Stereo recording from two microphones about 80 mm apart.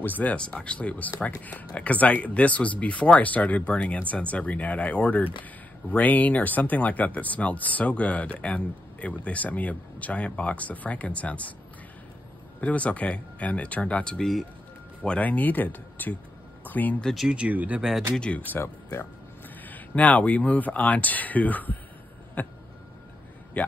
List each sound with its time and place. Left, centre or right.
0.0 s speech: left
12.5 s speech: centre
15.0 s speech: centre
16.6 s a sound: left
17.0 s speech: centre
17.3 s speech: centre
18.1 s speech: centre
18.6 s speech: left
19.6 s speech: centre